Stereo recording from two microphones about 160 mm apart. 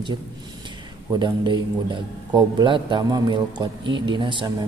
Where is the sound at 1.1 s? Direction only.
30° right (ahead or behind).